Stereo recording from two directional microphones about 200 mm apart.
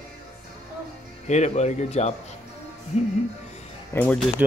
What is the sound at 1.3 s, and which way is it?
Speech, 35° left (ahead or behind).